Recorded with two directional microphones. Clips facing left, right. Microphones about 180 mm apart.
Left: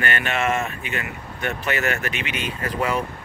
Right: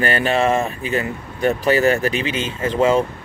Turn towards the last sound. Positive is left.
turn(degrees=-25)  # may be behind; listen again after turning